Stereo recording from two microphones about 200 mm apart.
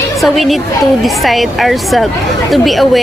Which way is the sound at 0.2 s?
Centre (ahead or behind).